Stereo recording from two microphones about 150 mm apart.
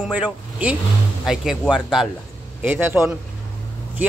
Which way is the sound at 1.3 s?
5° right (ahead or behind).